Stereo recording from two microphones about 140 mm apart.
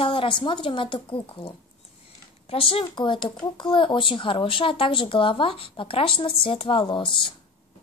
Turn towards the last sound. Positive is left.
turn(degrees=35)  # may be behind; listen again after turning